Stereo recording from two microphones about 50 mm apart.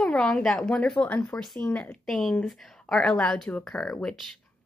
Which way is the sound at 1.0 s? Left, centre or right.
Left.